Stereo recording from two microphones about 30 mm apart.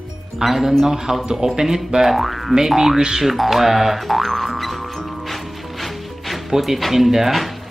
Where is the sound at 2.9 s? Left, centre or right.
Right.